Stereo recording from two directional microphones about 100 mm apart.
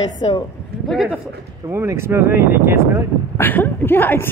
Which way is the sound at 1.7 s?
25° right (ahead or behind).